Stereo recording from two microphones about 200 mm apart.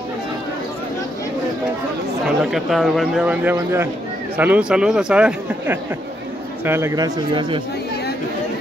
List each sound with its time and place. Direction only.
2.2 s a man's voice: centre (ahead or behind); by 7.6 s 25° right (ahead or behind)